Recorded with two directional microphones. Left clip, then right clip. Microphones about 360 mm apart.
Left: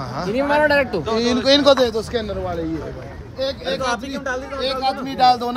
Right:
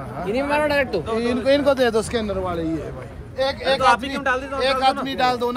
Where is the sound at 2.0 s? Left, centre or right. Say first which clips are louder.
Right 1 dB; right.